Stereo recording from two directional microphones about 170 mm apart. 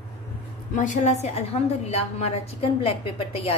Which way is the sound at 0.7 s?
50° left (ahead or behind).